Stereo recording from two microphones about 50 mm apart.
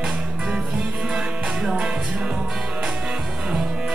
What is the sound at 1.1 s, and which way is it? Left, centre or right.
Music, centre.